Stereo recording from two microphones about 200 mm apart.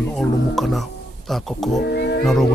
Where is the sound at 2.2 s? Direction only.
Centre (ahead or behind).